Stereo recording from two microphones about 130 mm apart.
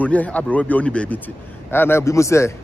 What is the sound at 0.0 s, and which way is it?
A man's voice, 10° left (ahead or behind).